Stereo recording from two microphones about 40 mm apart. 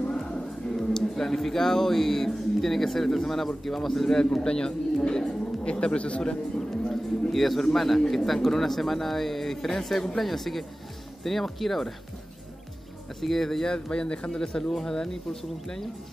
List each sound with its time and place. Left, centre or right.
0.7 s speech: centre
4.2 s speech: centre
6.9 s a man's voice: centre
13.2 s speech: centre
13.7 s speech: left
14.3 s speech: centre